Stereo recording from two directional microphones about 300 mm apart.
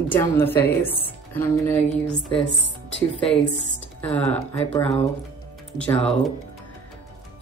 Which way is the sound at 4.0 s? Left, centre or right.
Centre.